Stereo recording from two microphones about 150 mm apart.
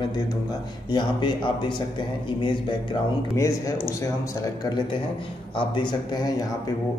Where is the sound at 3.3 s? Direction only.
20° left (ahead or behind).